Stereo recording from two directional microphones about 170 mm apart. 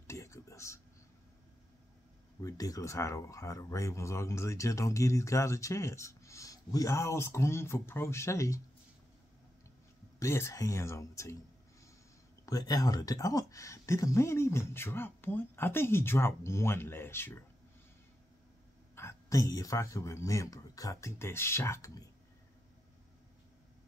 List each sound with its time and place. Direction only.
0.0 s a sound: 15° left (ahead or behind)
2.4 s speech: 20° left (ahead or behind)
10.1 s speech: 15° left (ahead or behind)
12.4 s speech: 20° left (ahead or behind)
18.9 s speech: 15° left (ahead or behind)